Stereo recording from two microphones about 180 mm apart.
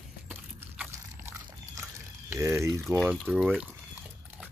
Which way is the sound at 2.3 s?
15° right (ahead or behind).